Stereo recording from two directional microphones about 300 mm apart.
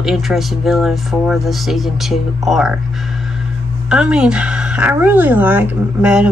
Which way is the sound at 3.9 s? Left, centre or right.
Centre.